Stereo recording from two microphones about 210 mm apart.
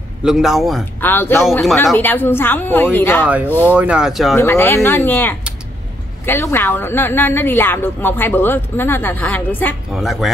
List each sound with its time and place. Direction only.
0.2 s speech: 5° right (ahead or behind)
1.1 s a woman's voice: 10° left (ahead or behind)
3.7 s speech: 5° right (ahead or behind)
4.4 s a woman's voice: 10° left (ahead or behind)